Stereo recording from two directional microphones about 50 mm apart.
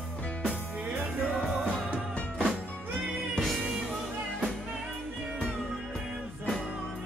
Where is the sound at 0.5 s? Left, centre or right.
Right.